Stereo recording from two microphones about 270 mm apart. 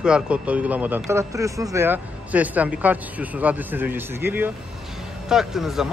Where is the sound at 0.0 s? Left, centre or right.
Centre.